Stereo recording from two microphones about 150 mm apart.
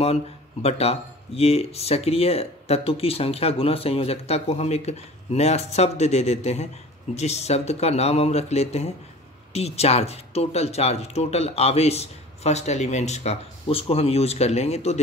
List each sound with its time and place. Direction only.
0.0 s speech: 45° left (ahead or behind)